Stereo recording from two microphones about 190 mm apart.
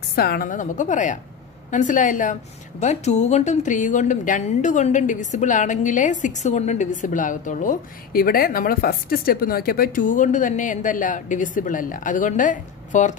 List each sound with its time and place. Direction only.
0.1 s a woman's voice: 55° left (ahead or behind)